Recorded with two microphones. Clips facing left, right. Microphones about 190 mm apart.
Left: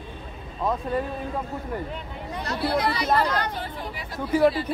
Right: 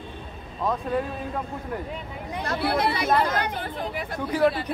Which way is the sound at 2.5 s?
55° right (ahead or behind).